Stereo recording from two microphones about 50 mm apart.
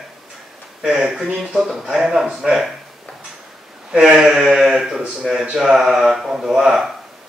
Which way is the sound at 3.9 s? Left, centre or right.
Centre.